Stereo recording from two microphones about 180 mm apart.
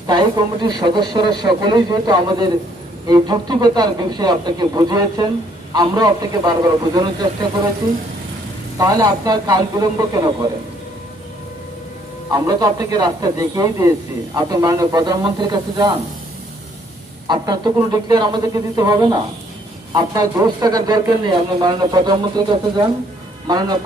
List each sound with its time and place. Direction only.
0.0 s speech: 25° right (ahead or behind)
8.7 s speech: 20° right (ahead or behind)
12.3 s speech: 20° right (ahead or behind)
17.3 s speech: 20° right (ahead or behind)